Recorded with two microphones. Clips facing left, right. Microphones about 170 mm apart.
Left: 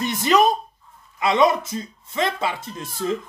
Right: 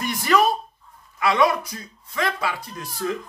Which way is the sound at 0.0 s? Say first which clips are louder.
Left 2 dB; 20° left (ahead or behind).